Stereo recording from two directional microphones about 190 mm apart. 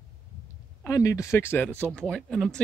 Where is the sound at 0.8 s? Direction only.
15° left (ahead or behind).